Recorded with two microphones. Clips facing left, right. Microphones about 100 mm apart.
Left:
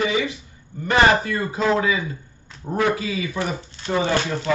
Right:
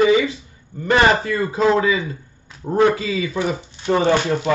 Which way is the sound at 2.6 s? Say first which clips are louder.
Right 5 dB; 30° right (ahead or behind).